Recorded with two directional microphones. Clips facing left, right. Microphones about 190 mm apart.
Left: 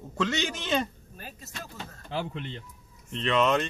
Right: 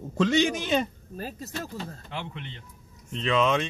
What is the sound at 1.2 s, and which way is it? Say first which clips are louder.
Speech: right 8 dB; 35° right (ahead or behind).